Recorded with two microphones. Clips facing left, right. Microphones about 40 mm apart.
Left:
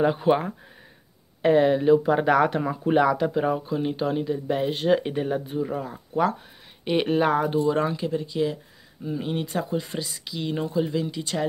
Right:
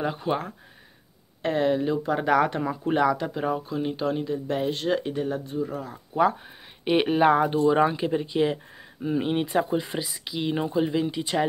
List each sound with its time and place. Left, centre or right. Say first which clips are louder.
0.0 s speech: left 6 dB; centre
6.8 s speech: right 1 dB; centre